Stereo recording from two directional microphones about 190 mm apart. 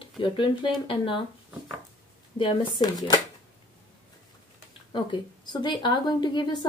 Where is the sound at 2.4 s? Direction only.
25° left (ahead or behind).